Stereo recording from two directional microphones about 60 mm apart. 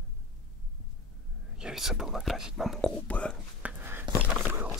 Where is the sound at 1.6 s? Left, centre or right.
Centre.